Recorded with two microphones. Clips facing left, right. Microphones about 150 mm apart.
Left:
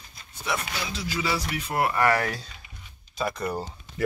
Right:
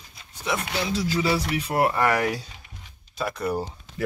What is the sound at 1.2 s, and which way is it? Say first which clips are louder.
Speech: right 4 dB; 30° right (ahead or behind).